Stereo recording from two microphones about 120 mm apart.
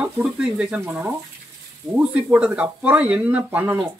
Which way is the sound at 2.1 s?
10° right (ahead or behind).